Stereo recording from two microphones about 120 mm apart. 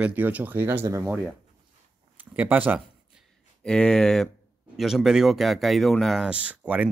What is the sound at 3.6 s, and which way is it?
Speech, 5° left (ahead or behind).